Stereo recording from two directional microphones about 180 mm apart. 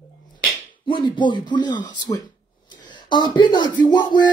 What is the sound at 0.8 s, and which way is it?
Speech, 25° left (ahead or behind).